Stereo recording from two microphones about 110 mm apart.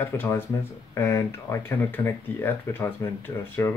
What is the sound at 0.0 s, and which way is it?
Speech, 20° left (ahead or behind).